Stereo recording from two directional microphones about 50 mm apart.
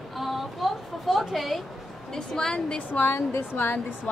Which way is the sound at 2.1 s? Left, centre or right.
Centre.